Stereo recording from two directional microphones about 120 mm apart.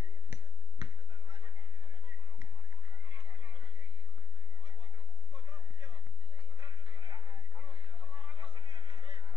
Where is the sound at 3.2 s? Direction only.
45° right (ahead or behind).